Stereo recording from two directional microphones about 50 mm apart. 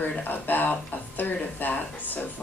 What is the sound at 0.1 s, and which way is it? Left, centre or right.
A woman's voice, left.